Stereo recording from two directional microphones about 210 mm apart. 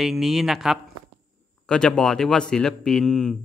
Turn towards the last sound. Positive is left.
turn(degrees=0)  # may be behind; listen again after turning